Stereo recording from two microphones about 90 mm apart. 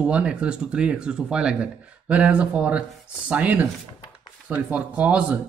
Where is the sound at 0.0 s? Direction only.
15° right (ahead or behind).